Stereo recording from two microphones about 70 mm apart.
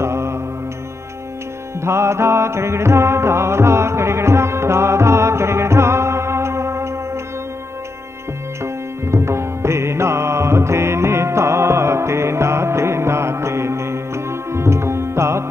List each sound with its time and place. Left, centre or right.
0.0 s mantra: right
1.8 s music: right
8.6 s music: right